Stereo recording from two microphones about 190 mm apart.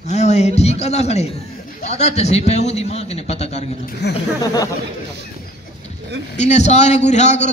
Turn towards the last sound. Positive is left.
turn(degrees=35)  # may be behind; listen again after turning